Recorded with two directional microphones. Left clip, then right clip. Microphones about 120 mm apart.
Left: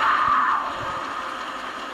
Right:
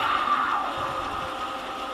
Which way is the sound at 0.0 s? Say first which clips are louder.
Left 4 dB; 45° left (ahead or behind).